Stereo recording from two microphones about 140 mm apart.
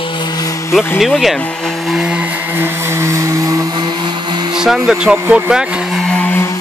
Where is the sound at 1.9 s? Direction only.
5° right (ahead or behind); by 4.4 s 25° right (ahead or behind).